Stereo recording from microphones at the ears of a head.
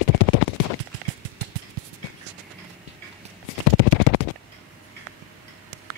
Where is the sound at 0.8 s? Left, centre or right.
Right.